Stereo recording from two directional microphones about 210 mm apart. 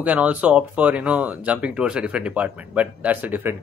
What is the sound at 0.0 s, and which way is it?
Speech, 5° right (ahead or behind).